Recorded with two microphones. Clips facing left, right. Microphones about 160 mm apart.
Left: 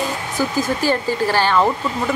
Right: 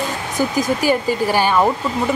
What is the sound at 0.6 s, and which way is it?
Speech, 15° right (ahead or behind).